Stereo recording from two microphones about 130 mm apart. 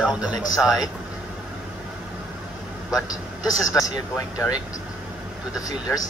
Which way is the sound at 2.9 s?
30° left (ahead or behind).